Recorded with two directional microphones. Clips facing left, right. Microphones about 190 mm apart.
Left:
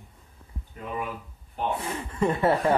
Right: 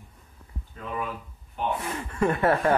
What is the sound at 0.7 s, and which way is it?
Speech, 20° left (ahead or behind).